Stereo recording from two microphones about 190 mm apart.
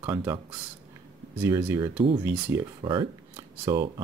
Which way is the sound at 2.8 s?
25° right (ahead or behind).